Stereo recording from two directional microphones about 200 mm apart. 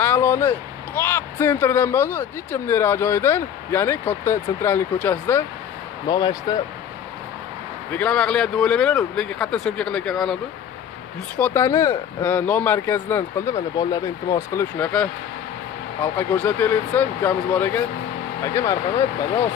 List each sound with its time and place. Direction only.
0.0 s speech: 10° left (ahead or behind)
6.0 s speech: 20° left (ahead or behind)
7.9 s speech: 5° left (ahead or behind)